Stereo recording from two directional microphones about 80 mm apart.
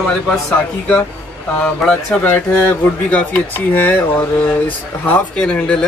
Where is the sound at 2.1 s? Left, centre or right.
Centre.